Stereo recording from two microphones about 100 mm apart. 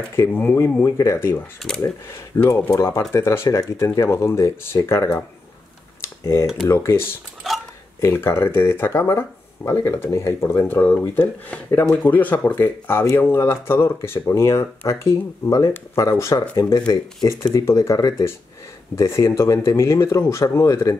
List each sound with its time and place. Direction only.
0.1 s speech: 20° left (ahead or behind)
5.9 s computer keyboard: 35° left (ahead or behind)
6.7 s speech: 25° left (ahead or behind)
7.5 s a sound: centre (ahead or behind)
8.0 s speech: 25° left (ahead or behind)
16.8 s speech: 45° left (ahead or behind)
17.6 s speech: 30° left (ahead or behind)